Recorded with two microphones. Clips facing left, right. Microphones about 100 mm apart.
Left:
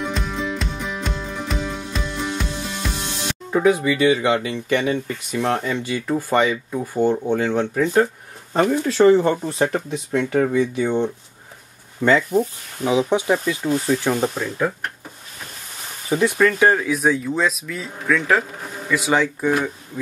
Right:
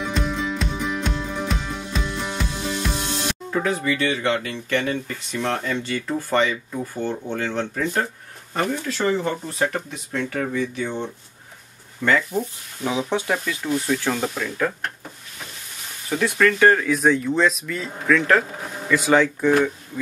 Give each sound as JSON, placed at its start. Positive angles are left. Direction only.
{"t": 0.0, "sound": "music", "side_deg": 0}
{"t": 3.5, "sound": "speech", "side_deg": 10}
{"t": 8.5, "sound": "speech", "side_deg": 35}
{"t": 9.6, "sound": "speech", "side_deg": 20}
{"t": 12.0, "sound": "speech", "side_deg": 20}
{"t": 13.6, "sound": "speech", "side_deg": 35}
{"t": 14.0, "sound": "speech", "side_deg": 20}
{"t": 16.1, "sound": "speech", "side_deg": 15}